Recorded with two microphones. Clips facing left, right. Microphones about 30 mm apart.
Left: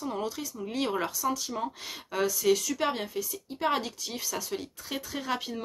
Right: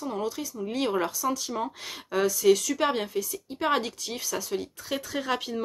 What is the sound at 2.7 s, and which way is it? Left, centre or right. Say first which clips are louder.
Speech: right 4 dB; right.